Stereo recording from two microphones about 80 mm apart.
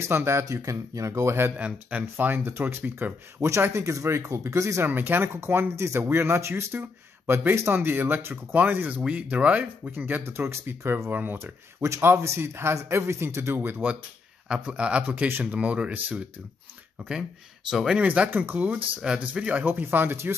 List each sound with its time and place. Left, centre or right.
0.0 s speech: right
1.6 s speech: centre
3.3 s speech: right
4.8 s speech: right
14.5 s a man's voice: centre
17.6 s a man's voice: centre
18.0 s speech: centre